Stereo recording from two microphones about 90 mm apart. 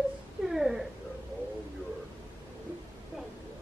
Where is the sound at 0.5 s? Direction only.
5° right (ahead or behind).